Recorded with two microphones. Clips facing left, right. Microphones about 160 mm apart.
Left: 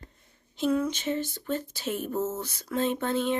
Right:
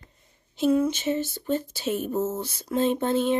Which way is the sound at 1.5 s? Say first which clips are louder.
Right 5 dB; 25° right (ahead or behind).